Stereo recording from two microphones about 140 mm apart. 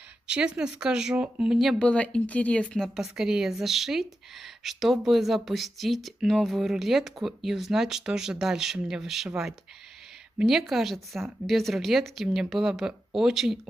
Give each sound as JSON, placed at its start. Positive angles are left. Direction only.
{"t": 0.3, "sound": "speech", "side_deg": -5}